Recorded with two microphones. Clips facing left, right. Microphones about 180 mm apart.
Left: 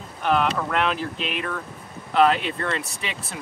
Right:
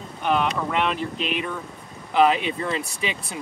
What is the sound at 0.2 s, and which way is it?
Speech, centre (ahead or behind).